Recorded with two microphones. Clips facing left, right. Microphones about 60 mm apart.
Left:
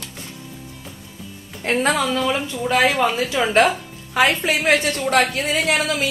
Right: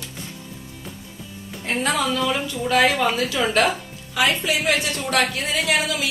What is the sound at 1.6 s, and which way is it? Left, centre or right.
Speech, left.